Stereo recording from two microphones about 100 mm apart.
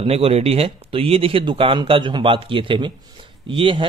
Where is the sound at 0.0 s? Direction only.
80° right.